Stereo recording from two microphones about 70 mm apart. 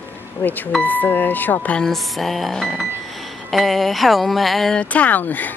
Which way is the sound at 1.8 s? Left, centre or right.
Centre.